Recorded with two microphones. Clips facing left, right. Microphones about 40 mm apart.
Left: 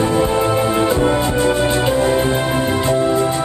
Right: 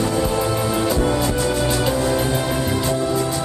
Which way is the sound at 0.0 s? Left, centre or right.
Left.